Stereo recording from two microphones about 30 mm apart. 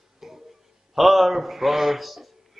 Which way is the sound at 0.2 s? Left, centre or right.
Centre.